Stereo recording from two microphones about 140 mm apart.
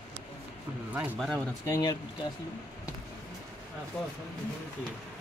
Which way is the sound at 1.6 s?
25° left (ahead or behind).